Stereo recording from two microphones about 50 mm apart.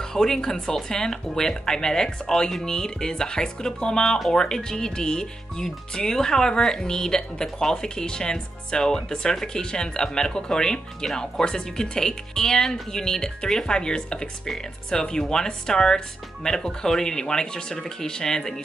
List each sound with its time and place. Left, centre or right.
0.1 s speech: centre